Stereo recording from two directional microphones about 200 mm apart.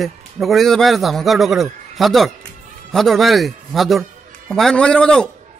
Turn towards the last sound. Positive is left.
turn(degrees=5)  # may be behind; listen again after turning